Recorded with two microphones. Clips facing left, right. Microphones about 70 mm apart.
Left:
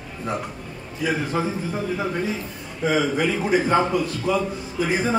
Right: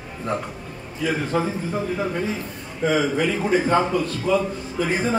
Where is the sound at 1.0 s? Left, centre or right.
Centre.